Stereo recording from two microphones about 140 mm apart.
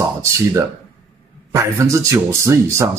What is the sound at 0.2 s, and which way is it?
Speech, 20° right (ahead or behind).